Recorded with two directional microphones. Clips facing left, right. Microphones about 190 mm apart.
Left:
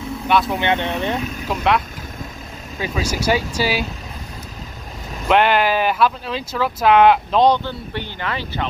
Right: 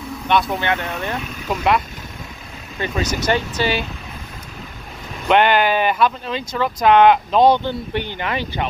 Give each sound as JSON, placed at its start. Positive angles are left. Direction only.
{"t": 0.3, "sound": "speech", "side_deg": 0}
{"t": 0.6, "sound": "speech", "side_deg": 20}
{"t": 1.5, "sound": "speech", "side_deg": 0}
{"t": 2.8, "sound": "speech", "side_deg": 10}
{"t": 5.3, "sound": "speech", "side_deg": 0}
{"t": 7.5, "sound": "speech", "side_deg": -15}